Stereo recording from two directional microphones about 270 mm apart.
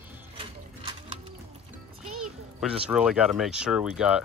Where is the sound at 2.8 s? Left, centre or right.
Centre.